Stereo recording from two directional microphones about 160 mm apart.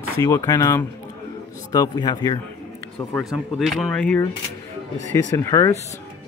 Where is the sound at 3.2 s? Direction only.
Centre (ahead or behind).